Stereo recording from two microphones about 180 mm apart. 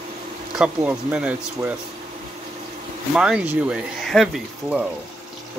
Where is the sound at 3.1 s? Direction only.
5° right (ahead or behind).